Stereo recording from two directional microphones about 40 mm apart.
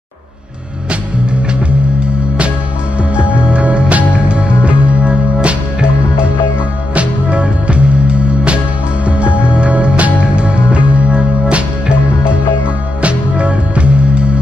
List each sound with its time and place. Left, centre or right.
3.2 s music: right
13.0 s music: right